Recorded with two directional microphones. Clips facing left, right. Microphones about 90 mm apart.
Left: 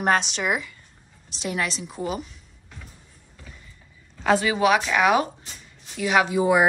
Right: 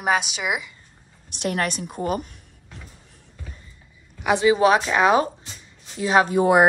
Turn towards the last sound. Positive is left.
turn(degrees=-55)  # may be behind; listen again after turning